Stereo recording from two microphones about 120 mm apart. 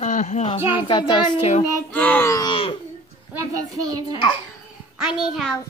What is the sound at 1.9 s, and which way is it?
Speech, 15° left (ahead or behind).